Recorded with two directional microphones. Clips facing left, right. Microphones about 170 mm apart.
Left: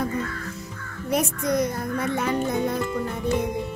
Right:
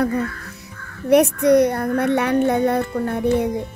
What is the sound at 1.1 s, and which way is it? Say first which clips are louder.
Speech: right 10 dB; 65° right (ahead or behind).